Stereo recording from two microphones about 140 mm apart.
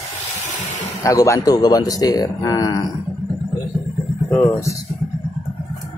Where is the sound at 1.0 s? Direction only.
20° left (ahead or behind).